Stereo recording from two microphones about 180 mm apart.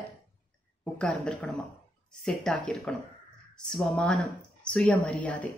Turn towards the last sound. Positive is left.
turn(degrees=5)  # may be behind; listen again after turning